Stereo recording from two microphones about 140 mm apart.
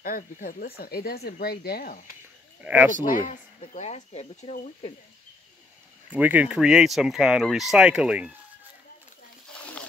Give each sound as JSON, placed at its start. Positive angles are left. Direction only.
{"t": 0.0, "sound": "speech", "side_deg": 90}
{"t": 2.6, "sound": "speech", "side_deg": -10}
{"t": 2.9, "sound": "speech", "side_deg": 65}
{"t": 3.6, "sound": "speech", "side_deg": 50}
{"t": 6.0, "sound": "speech", "side_deg": -10}
{"t": 9.5, "sound": "a sound", "side_deg": 10}